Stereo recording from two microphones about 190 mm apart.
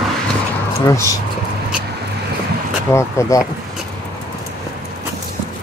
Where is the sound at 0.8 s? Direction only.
15° left (ahead or behind).